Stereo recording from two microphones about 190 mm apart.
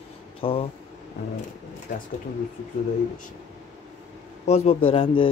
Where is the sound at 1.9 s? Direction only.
40° left (ahead or behind).